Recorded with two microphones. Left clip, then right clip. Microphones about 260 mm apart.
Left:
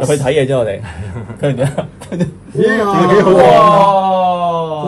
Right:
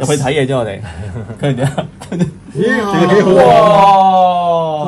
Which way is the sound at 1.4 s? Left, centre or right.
Centre.